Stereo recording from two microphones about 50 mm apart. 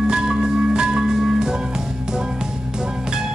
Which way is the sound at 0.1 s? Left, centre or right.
Centre.